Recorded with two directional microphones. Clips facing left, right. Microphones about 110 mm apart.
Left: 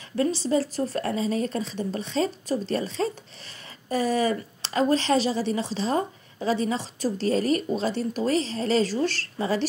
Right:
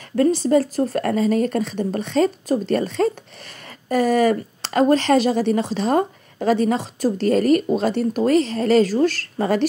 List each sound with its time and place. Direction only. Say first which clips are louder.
0.1 s speech: right 7 dB; 50° right (ahead or behind)